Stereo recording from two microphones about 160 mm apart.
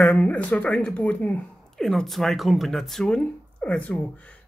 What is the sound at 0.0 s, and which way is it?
Speech, 10° left (ahead or behind).